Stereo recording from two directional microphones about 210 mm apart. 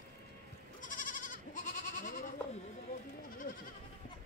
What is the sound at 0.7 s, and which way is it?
Goat, 40° left (ahead or behind).